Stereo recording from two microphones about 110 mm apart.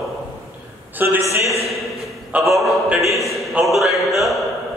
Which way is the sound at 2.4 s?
Centre (ahead or behind).